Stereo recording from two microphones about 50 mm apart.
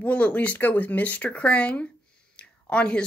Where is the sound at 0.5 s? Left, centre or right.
Left.